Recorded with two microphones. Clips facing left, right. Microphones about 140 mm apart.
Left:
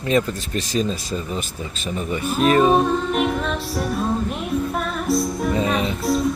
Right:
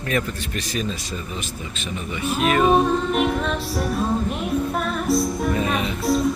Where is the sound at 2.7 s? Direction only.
Centre (ahead or behind).